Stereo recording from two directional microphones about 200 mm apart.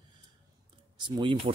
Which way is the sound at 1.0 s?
25° right (ahead or behind).